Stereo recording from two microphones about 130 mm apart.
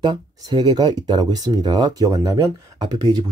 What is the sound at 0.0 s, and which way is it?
Speech, 35° right (ahead or behind).